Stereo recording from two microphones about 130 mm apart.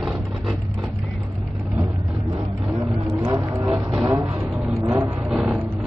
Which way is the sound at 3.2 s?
25° right (ahead or behind).